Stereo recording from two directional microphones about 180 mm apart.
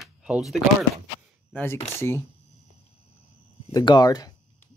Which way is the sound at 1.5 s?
15° left (ahead or behind).